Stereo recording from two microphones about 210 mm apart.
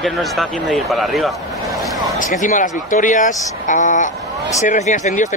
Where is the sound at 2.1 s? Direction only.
40° left (ahead or behind).